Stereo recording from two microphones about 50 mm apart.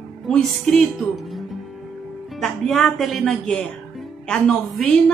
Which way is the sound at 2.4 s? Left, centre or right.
Centre.